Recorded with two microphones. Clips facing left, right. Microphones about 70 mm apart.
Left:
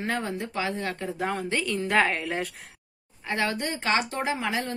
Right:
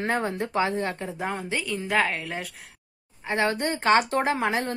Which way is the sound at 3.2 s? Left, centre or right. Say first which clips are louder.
Right 3 dB; right.